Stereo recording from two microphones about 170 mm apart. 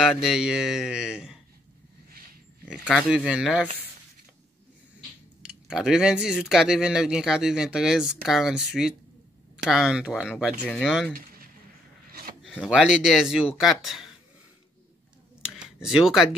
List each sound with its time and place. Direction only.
0.0 s speech: centre (ahead or behind)
2.7 s speech: centre (ahead or behind)
5.4 s speech: 5° right (ahead or behind)
12.1 s rub: 60° right (ahead or behind)
12.4 s speech: centre (ahead or behind)
15.4 s a sound: 5° right (ahead or behind)